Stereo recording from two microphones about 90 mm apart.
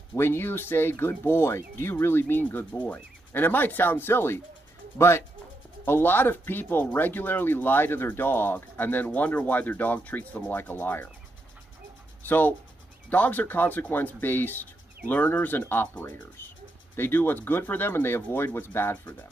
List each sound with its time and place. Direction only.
0.1 s speech: 25° left (ahead or behind)
12.3 s speech: 20° left (ahead or behind)